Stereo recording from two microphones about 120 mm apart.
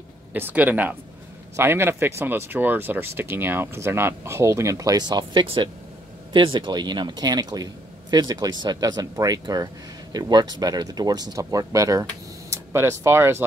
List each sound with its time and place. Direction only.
0.3 s speech: 15° right (ahead or behind)